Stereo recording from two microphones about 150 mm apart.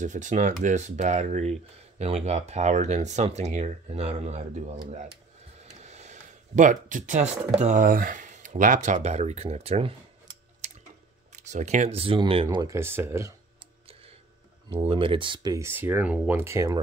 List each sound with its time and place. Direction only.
0.0 s speech: 55° right (ahead or behind)
5.9 s speech: 50° right (ahead or behind)
10.6 s a sound: 50° right (ahead or behind)
11.3 s speech: 50° right (ahead or behind)
12.4 s speech: 20° right (ahead or behind)
14.7 s speech: 35° right (ahead or behind); by 16.8 s 20° right (ahead or behind)